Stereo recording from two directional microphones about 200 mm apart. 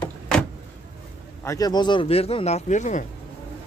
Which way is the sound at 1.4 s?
15° left (ahead or behind).